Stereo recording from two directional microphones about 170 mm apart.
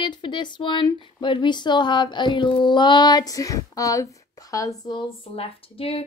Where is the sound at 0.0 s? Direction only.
30° left (ahead or behind).